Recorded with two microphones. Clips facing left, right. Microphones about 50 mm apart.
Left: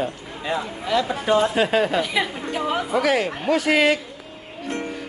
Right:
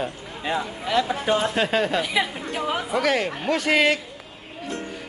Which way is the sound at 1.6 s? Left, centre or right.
Centre.